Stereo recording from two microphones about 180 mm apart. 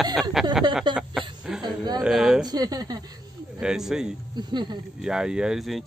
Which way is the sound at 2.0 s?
5° right (ahead or behind).